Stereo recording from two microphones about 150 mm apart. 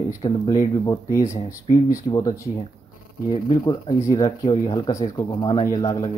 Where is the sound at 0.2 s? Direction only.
25° left (ahead or behind).